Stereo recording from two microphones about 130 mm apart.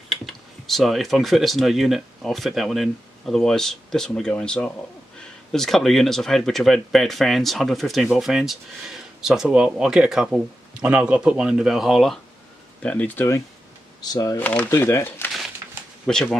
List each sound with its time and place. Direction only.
0.1 s speech: centre (ahead or behind)
12.8 s speech: 10° left (ahead or behind)
14.0 s speech: 30° left (ahead or behind)
14.4 s speech: 10° left (ahead or behind)
16.1 s speech: 5° left (ahead or behind)